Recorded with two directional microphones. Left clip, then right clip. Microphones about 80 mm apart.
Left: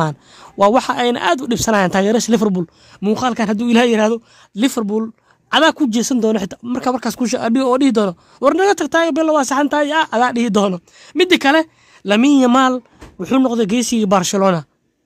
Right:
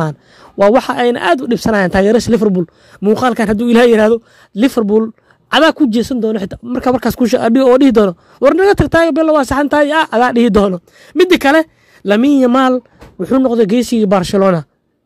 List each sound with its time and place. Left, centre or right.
0.0 s speech: right
3.2 s speech: right
4.8 s speech: right
5.5 s speech: right
6.3 s speech: centre
6.7 s speech: right
7.0 s speech: right
9.7 s speech: right
14.1 s speech: centre